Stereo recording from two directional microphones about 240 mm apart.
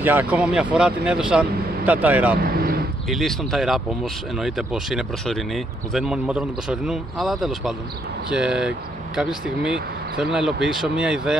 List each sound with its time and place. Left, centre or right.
0.0 s speech: centre
2.4 s vehicle: right
3.1 s speech: centre